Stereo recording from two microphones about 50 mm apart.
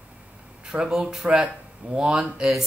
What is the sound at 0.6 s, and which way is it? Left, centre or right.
Speech, centre.